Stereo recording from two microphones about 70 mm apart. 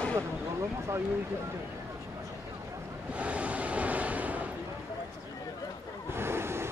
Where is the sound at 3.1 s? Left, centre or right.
Centre.